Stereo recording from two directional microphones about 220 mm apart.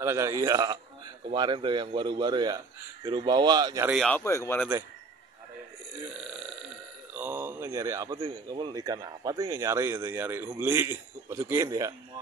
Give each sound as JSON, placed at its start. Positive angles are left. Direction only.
{"t": 0.0, "sound": "a man's voice", "side_deg": -15}
{"t": 3.9, "sound": "speech", "side_deg": 0}
{"t": 4.2, "sound": "speech", "side_deg": 10}
{"t": 7.2, "sound": "speech", "side_deg": -10}